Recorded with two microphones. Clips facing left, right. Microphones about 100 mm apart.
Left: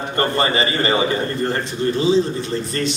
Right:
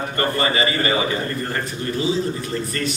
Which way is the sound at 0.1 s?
30° left (ahead or behind).